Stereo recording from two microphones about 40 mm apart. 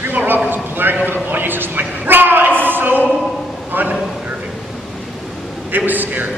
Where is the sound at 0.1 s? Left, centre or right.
Right.